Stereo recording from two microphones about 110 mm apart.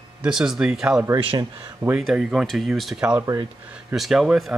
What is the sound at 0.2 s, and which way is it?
Speech, 5° right (ahead or behind).